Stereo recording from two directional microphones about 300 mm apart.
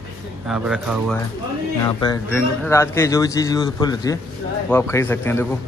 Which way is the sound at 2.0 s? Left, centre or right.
Centre.